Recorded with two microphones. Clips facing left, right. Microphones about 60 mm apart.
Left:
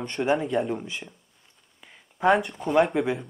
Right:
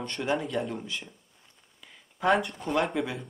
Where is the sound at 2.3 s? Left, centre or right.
Centre.